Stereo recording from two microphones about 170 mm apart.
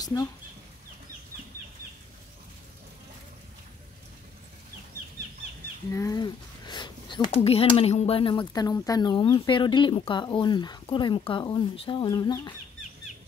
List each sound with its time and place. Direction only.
0.0 s speech: 20° left (ahead or behind)
5.9 s speech: 20° left (ahead or behind)